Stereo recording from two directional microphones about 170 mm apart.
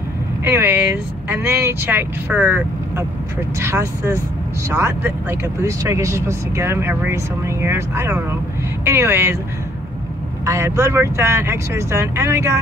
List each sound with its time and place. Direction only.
0.4 s speech: 10° right (ahead or behind)
10.4 s speech: 15° right (ahead or behind)